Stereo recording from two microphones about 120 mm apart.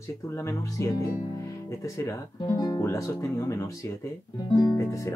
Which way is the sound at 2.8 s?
25° left (ahead or behind).